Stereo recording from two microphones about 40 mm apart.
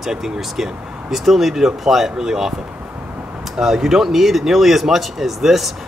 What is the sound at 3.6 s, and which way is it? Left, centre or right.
Speech, centre.